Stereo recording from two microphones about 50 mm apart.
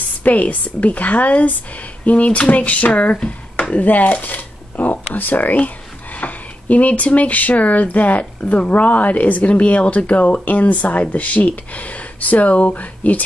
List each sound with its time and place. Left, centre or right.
0.2 s speech: left